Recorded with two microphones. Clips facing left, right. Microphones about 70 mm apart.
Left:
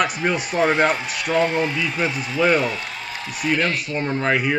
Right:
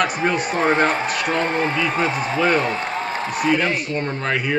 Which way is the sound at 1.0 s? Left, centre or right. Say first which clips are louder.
Even; right.